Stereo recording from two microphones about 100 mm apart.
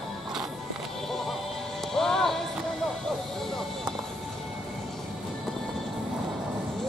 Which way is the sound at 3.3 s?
5° left (ahead or behind).